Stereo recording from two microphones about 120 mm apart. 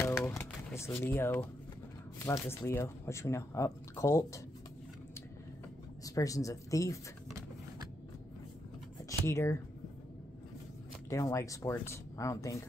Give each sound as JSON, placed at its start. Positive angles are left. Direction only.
{"t": 0.0, "sound": "a sound", "side_deg": 20}
{"t": 2.1, "sound": "speech", "side_deg": 20}
{"t": 6.0, "sound": "speech", "side_deg": 30}
{"t": 9.2, "sound": "speech", "side_deg": 25}
{"t": 11.1, "sound": "speech", "side_deg": 25}